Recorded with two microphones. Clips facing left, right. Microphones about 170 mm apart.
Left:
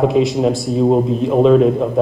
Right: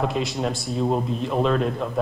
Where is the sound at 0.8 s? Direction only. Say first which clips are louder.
Left 9 dB; 45° left (ahead or behind).